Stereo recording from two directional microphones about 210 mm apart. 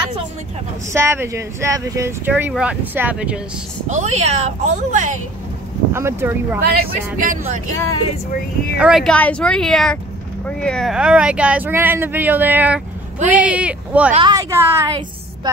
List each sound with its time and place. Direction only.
0.9 s speech: 10° right (ahead or behind)
3.9 s a woman's voice: 35° right (ahead or behind)
5.9 s speech: 10° right (ahead or behind)
6.6 s speech: 50° right (ahead or behind)
7.2 s a woman's voice: 35° right (ahead or behind)
7.7 s speech: 15° left (ahead or behind)
8.7 s speech: 5° right (ahead or behind)
14.1 s speech: 20° right (ahead or behind)